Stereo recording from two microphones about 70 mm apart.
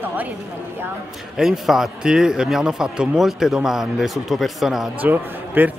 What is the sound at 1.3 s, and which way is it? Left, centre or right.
A man's voice, centre.